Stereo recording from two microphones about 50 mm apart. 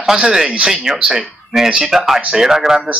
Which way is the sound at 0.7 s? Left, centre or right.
Centre.